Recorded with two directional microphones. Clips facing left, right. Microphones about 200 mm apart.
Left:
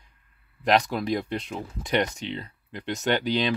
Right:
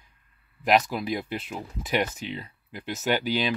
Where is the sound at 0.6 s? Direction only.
5° right (ahead or behind).